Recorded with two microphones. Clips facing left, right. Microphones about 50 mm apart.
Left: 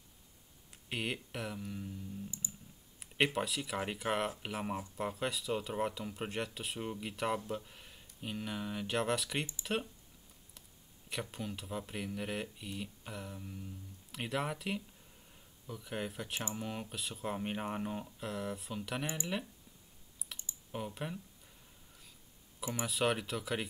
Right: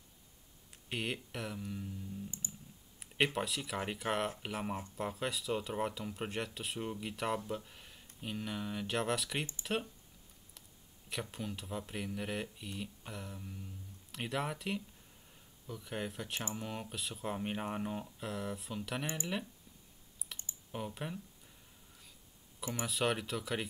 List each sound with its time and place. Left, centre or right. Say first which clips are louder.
0.8 s speech: even; centre
2.4 s clicking: even; right
3.3 s speech: left 1 dB; centre
11.1 s speech: even; centre
20.3 s typing: even; centre
20.7 s speech: left 1 dB; centre
22.8 s speech: left 1 dB; centre